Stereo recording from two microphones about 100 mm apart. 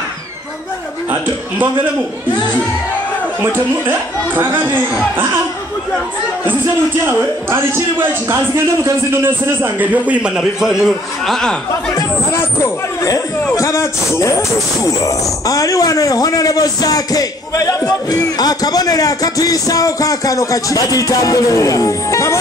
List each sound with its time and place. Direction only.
3.5 s a man's voice: 20° right (ahead or behind)
7.1 s a man's voice: 25° right (ahead or behind); by 11.5 s 5° left (ahead or behind)
12.3 s a sound: 25° left (ahead or behind)
13.6 s speech: 30° left (ahead or behind)